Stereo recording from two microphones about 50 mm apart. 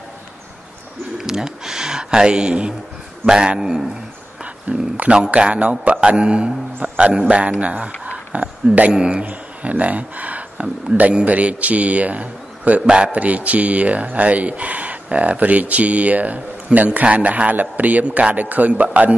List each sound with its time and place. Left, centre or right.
1.1 s speech: centre
4.6 s a man's voice: right
9.2 s a sound: right
11.2 s a man's voice: right